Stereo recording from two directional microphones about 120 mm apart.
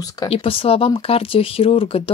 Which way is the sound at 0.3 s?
50° left (ahead or behind).